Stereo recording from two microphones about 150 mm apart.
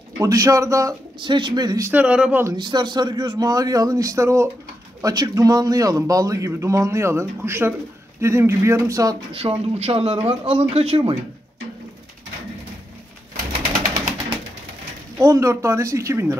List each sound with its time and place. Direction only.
0.2 s speech: 20° right (ahead or behind)
1.9 s speech: 10° right (ahead or behind)
2.4 s speech: 30° right (ahead or behind)
9.3 s speech: 40° right (ahead or behind)
15.1 s speech: 20° right (ahead or behind)